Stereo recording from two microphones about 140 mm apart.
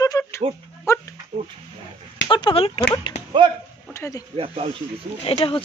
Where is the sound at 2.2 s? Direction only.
35° left (ahead or behind).